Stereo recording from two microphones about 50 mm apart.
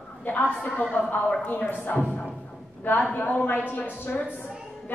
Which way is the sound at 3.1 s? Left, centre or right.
Left.